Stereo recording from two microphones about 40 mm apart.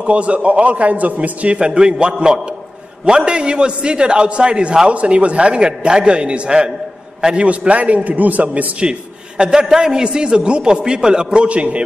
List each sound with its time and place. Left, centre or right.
0.0 s a man's voice: right
1.6 s a man's voice: centre
7.4 s a man's voice: right
9.4 s a man's voice: centre
11.3 s a man's voice: right